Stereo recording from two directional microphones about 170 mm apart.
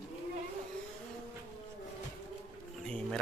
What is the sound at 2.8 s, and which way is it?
Speech, 5° left (ahead or behind).